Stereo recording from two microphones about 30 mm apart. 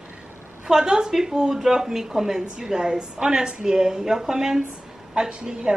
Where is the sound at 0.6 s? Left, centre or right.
Right.